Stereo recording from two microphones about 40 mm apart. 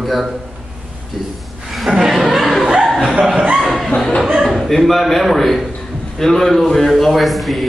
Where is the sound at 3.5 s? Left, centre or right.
Centre.